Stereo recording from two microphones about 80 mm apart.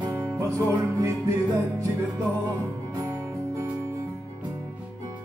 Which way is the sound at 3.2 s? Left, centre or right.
Right.